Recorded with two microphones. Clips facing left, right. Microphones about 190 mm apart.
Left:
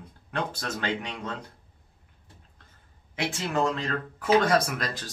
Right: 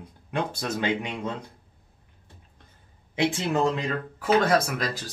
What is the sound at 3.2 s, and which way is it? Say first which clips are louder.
Speech: right 3 dB; 20° right (ahead or behind).